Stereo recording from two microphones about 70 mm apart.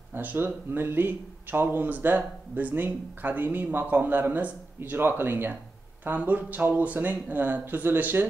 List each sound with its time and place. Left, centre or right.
0.1 s speech: right